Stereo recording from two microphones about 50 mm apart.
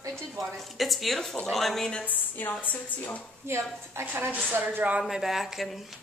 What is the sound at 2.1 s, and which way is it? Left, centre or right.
A woman's voice, left.